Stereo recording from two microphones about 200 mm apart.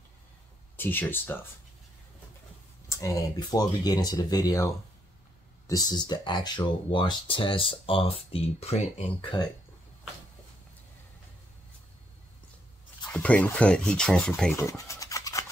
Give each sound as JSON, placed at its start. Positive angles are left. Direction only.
{"t": 0.7, "sound": "speech", "side_deg": 10}
{"t": 2.9, "sound": "speech", "side_deg": 15}
{"t": 13.1, "sound": "speech", "side_deg": 5}